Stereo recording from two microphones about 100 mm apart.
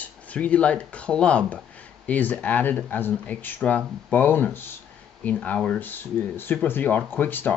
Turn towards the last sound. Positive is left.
turn(degrees=20)  # may be behind; listen again after turning